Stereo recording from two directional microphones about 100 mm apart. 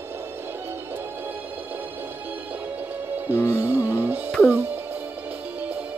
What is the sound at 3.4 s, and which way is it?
Music, 20° right (ahead or behind).